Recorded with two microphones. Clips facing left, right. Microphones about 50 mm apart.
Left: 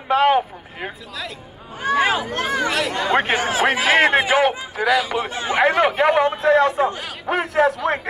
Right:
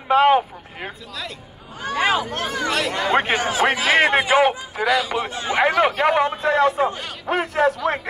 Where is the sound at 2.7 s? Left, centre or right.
Centre.